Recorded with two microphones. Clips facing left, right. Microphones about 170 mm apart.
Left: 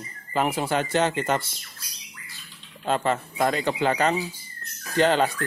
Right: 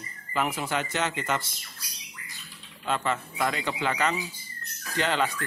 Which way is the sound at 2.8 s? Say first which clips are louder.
Left 4 dB; 40° left (ahead or behind).